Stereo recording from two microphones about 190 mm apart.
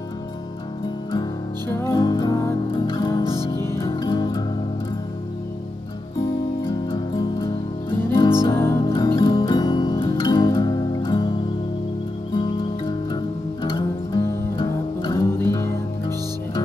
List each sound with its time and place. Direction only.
1.7 s music: 15° left (ahead or behind)
3.5 s music: 15° left (ahead or behind)
6.9 s music: 25° left (ahead or behind)
8.9 s music: 25° left (ahead or behind)
13.1 s music: 25° left (ahead or behind)